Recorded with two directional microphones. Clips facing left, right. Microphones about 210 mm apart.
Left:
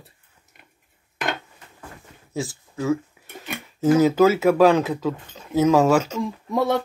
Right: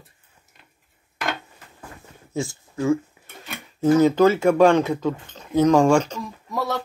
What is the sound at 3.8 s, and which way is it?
Speech, 5° left (ahead or behind).